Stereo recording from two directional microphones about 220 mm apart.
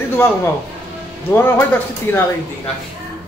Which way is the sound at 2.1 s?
10° left (ahead or behind).